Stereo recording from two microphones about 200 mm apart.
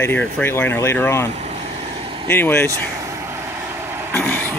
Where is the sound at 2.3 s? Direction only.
10° left (ahead or behind).